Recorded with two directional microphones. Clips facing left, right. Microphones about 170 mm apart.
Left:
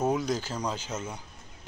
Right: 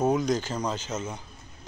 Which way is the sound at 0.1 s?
5° left (ahead or behind).